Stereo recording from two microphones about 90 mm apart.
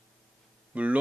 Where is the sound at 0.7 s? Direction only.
15° right (ahead or behind).